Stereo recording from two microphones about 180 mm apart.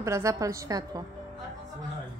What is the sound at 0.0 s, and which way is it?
A woman's voice, 15° right (ahead or behind).